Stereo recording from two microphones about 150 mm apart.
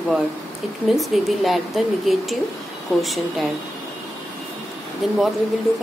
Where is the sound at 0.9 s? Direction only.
Centre (ahead or behind).